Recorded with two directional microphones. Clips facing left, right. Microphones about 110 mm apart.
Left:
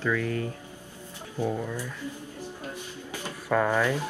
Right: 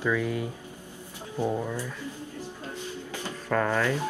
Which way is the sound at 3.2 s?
10° left (ahead or behind).